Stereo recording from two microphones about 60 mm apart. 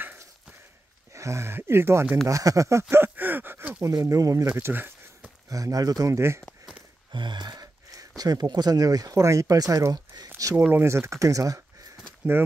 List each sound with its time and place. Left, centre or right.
1.1 s speech: right
2.2 s speech: right
2.9 s speech: right
3.8 s speech: right
4.6 s a sound: right
5.5 s speech: right
6.1 s speech: right
7.5 s a sound: right
8.2 s speech: right
9.2 s speech: right
10.7 s speech: right